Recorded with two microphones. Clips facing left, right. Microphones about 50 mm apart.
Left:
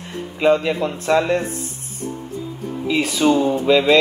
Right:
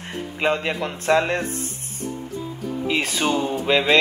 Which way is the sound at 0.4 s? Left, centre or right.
Right.